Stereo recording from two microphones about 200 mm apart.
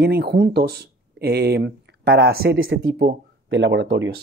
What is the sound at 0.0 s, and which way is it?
Speech, 55° right (ahead or behind).